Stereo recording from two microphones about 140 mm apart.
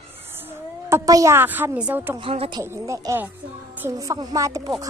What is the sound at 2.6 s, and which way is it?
Speech, 20° right (ahead or behind).